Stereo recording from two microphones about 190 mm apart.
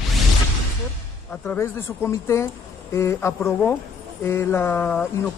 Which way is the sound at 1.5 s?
15° left (ahead or behind).